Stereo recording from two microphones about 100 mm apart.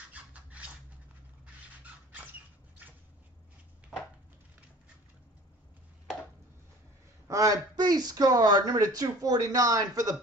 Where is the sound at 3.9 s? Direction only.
Centre (ahead or behind).